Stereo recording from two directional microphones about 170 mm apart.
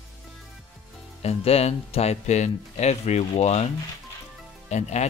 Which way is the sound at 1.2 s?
35° left (ahead or behind).